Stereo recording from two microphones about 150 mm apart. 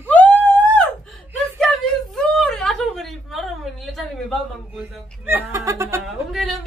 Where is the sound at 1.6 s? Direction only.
5° left (ahead or behind).